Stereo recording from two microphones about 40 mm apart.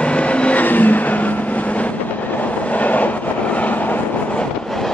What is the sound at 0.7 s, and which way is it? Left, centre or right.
Vehicle, left.